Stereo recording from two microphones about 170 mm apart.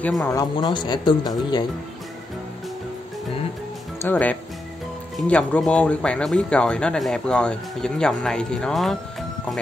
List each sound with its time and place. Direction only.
0.0 s speech: 10° left (ahead or behind)
4.0 s speech: 10° left (ahead or behind)